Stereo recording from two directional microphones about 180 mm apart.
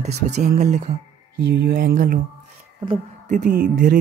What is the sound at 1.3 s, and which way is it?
Speech, 65° right (ahead or behind).